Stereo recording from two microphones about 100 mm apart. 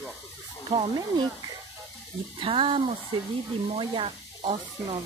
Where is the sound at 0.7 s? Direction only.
40° right (ahead or behind).